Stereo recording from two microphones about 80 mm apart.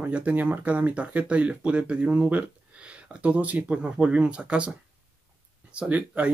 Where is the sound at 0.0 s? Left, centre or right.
Centre.